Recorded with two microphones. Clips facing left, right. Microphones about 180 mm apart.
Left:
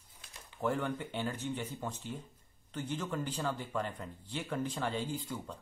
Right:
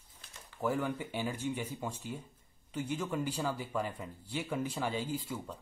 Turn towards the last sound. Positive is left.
turn(degrees=-5)  # may be behind; listen again after turning